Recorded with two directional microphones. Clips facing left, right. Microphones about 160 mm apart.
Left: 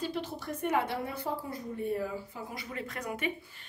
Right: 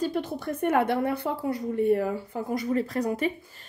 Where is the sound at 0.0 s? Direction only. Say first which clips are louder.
Right 7 dB; 50° right (ahead or behind); by 2.1 s 70° right (ahead or behind).